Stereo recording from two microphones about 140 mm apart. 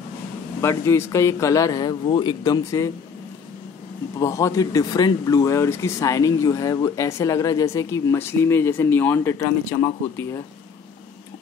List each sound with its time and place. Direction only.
0.6 s speech: 20° left (ahead or behind)
4.2 s speech: 20° left (ahead or behind)